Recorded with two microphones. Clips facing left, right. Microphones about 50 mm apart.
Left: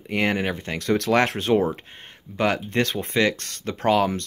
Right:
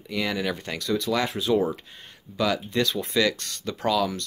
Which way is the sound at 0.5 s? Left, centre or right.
Left.